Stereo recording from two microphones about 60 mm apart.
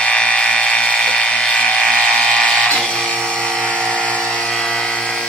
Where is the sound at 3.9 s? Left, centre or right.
Centre.